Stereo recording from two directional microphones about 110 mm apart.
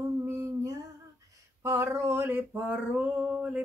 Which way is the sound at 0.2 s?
25° right (ahead or behind).